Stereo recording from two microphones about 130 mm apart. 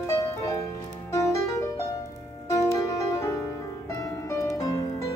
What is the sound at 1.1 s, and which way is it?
Music, 25° left (ahead or behind).